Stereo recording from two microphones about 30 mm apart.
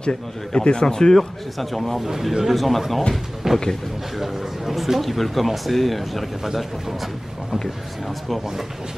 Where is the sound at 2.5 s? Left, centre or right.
Centre.